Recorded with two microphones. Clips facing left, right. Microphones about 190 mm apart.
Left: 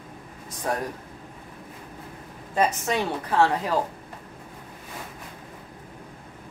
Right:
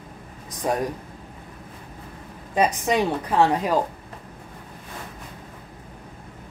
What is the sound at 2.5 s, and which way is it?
Speech, 15° right (ahead or behind).